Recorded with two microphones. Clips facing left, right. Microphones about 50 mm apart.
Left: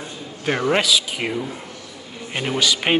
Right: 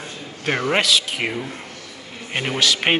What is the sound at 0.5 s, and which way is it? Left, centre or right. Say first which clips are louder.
Speech: even; centre.